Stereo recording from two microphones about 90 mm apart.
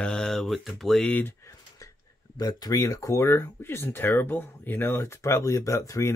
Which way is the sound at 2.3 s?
45° left (ahead or behind).